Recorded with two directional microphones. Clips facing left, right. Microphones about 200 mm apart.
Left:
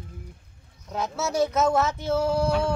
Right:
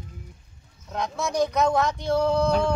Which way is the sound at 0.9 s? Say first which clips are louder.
Even; 5° left (ahead or behind).